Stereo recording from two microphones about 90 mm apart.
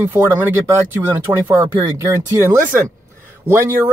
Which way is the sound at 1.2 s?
35° right (ahead or behind).